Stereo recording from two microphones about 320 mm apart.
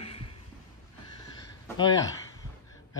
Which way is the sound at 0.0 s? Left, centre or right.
Centre.